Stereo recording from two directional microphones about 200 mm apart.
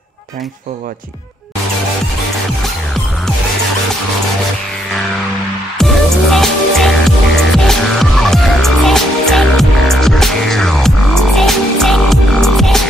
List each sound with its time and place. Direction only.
6.3 s music: centre (ahead or behind)